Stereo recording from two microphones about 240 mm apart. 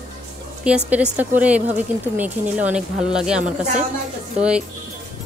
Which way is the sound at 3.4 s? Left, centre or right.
Right.